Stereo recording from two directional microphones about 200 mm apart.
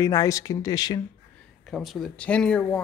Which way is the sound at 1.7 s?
Centre (ahead or behind).